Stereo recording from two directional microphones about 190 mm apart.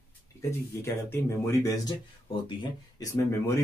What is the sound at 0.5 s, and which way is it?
Speech, 15° left (ahead or behind).